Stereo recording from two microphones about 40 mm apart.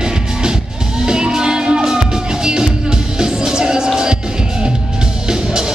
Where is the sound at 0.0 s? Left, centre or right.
Centre.